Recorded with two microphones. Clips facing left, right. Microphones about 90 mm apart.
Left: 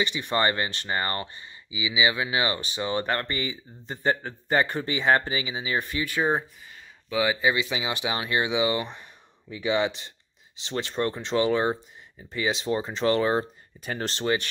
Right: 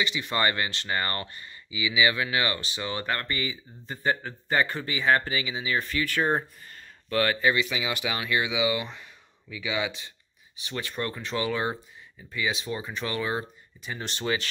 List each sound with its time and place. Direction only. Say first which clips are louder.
0.0 s speech: left 2 dB; 25° left (ahead or behind); by 7.5 s 10° left (ahead or behind)
7.5 s speech: even; 25° left (ahead or behind)
10.7 s speech: left 5 dB; 25° left (ahead or behind)